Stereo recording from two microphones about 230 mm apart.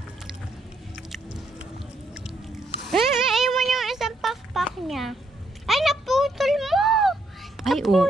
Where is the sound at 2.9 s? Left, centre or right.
Centre.